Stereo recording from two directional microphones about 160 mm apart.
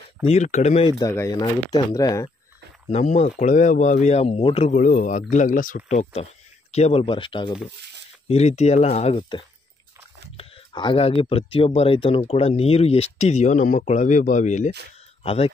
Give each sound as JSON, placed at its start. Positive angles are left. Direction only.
{"t": 0.3, "sound": "speech", "side_deg": 50}
{"t": 0.8, "sound": "speech", "side_deg": 30}
{"t": 2.9, "sound": "speech", "side_deg": 45}
{"t": 4.7, "sound": "speech", "side_deg": 55}
{"t": 8.3, "sound": "speech", "side_deg": 45}
{"t": 9.1, "sound": "speech", "side_deg": 30}
{"t": 15.2, "sound": "speech", "side_deg": 40}